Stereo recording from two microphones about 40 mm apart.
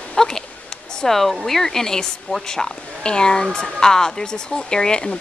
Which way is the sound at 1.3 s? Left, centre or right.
Centre.